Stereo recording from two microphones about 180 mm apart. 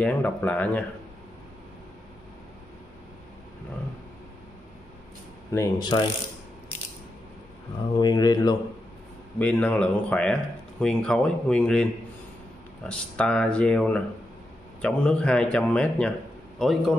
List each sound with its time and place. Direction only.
0.0 s speech: 10° left (ahead or behind)
5.5 s speech: 20° left (ahead or behind)
8.0 s speech: 20° left (ahead or behind)
9.4 s a man's voice: 10° left (ahead or behind)